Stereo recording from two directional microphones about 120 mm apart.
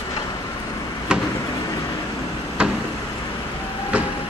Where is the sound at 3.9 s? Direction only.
10° right (ahead or behind).